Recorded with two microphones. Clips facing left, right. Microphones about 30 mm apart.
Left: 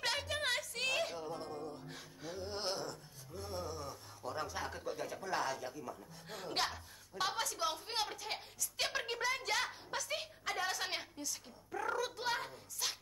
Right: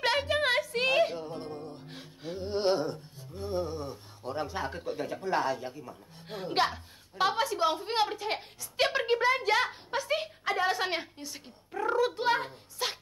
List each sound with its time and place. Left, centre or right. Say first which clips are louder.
0.0 s music: right 10 dB; right